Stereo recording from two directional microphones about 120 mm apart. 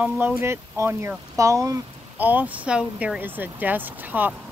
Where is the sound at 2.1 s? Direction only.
15° right (ahead or behind).